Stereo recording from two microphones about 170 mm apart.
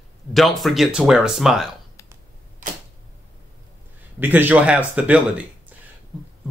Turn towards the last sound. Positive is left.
turn(degrees=-10)  # may be behind; listen again after turning